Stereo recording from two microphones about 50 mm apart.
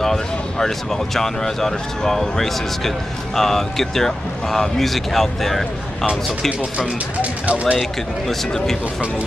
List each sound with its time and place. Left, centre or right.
0.0 s speech: centre
7.2 s speech: right
8.3 s speech: centre